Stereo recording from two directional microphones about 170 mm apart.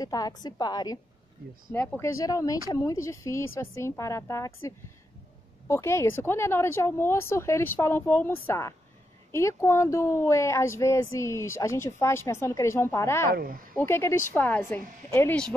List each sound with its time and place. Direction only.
0.0 s a woman's voice: 20° left (ahead or behind)
1.7 s a woman's voice: 10° left (ahead or behind)
13.3 s speech: 60° right (ahead or behind)
13.7 s a woman's voice: 15° left (ahead or behind)